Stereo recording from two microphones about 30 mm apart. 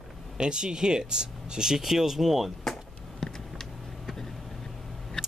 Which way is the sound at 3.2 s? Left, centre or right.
Centre.